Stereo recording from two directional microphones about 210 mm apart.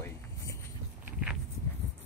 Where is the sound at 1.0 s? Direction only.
5° right (ahead or behind).